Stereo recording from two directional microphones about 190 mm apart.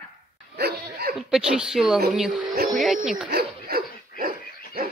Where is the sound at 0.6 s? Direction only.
55° right (ahead or behind).